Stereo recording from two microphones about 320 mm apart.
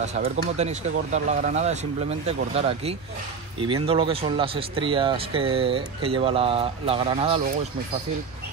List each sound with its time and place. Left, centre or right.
0.0 s speech: right